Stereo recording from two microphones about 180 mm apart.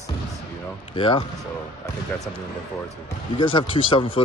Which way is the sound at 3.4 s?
30° left (ahead or behind).